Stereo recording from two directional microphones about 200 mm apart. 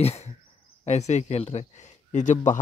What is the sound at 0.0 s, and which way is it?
Speech, 35° left (ahead or behind).